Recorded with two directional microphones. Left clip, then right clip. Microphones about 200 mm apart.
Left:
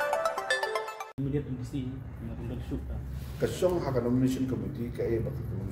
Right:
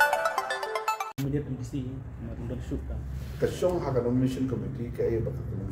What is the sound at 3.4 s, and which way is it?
Speech, centre (ahead or behind).